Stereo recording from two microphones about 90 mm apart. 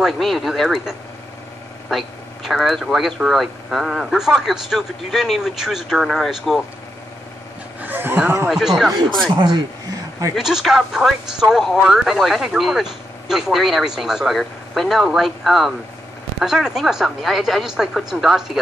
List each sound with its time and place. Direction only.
0.0 s speech: centre (ahead or behind)
7.8 s a sound: 20° right (ahead or behind)
8.5 s speech: centre (ahead or behind)
9.3 s speech: 55° right (ahead or behind)
10.3 s speech: centre (ahead or behind)